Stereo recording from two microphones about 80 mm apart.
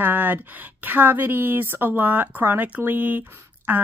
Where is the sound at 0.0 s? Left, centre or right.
Right.